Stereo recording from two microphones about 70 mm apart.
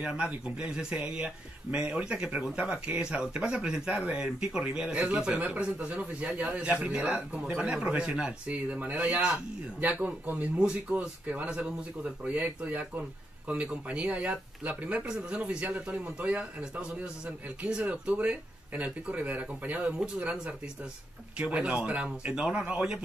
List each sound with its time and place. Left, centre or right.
0.0 s a man's voice: centre